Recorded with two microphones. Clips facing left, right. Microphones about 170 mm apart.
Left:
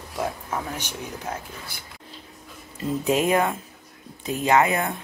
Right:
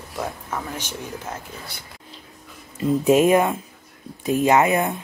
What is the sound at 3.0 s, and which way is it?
Speech, 15° right (ahead or behind).